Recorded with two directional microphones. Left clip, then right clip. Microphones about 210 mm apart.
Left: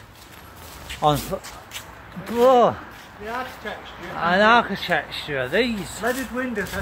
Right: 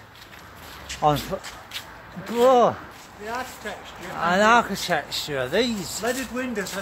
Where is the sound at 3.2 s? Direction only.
30° right (ahead or behind).